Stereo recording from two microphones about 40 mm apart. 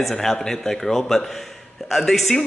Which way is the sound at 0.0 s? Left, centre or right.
Centre.